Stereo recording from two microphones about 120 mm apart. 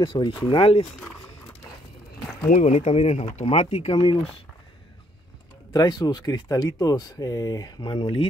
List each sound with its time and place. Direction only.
0.0 s speech: 40° left (ahead or behind)
2.5 s speech: 70° left (ahead or behind); by 4.2 s 45° left (ahead or behind)
5.7 s speech: 35° left (ahead or behind)